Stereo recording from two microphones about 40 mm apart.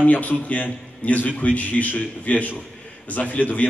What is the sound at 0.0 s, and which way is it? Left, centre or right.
A man's voice, left.